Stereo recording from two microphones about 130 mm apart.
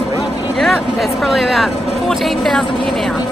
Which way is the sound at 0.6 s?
Centre (ahead or behind).